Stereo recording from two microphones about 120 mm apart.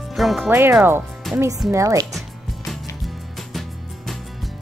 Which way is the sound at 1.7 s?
25° right (ahead or behind).